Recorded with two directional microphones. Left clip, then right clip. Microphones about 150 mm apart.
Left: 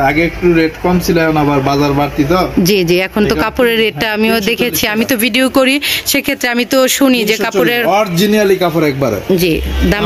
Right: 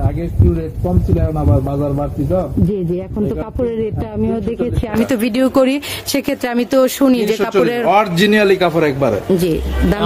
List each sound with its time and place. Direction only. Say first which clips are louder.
3.2 s speech: left 8 dB; 40° left (ahead or behind)
3.6 s speech: left 7 dB; centre (ahead or behind)
7.9 s a man's voice: left 1 dB; 55° left (ahead or behind)
9.4 s speech: left 4 dB; 5° right (ahead or behind)